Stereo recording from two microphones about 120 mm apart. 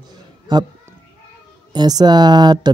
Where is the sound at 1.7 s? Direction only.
35° right (ahead or behind).